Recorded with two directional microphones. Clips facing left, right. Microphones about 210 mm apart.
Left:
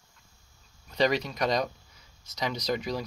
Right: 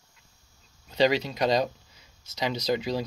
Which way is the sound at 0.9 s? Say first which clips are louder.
Right 3 dB; 30° right (ahead or behind).